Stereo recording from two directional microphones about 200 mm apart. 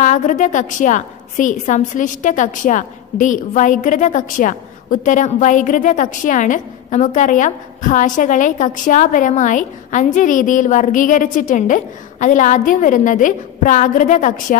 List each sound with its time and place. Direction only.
0.0 s a woman's voice: 40° left (ahead or behind)